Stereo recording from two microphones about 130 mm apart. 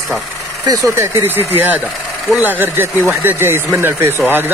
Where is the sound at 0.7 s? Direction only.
20° right (ahead or behind).